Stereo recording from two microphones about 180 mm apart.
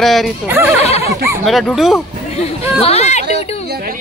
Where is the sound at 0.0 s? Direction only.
Centre (ahead or behind).